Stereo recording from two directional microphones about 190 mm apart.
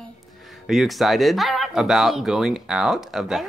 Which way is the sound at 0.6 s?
Centre (ahead or behind).